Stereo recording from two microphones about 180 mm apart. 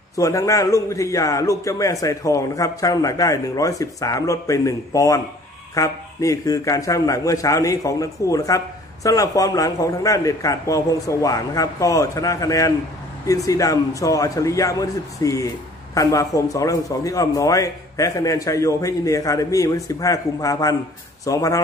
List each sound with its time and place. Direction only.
0.1 s a man's voice: 15° left (ahead or behind)